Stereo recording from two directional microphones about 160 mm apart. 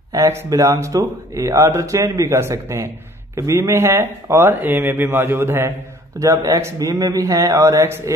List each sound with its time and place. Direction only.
0.1 s speech: 15° right (ahead or behind)